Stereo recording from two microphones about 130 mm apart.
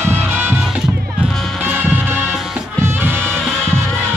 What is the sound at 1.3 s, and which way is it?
Music, 5° left (ahead or behind).